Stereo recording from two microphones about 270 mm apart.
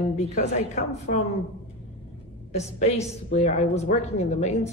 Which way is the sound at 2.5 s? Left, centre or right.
Left.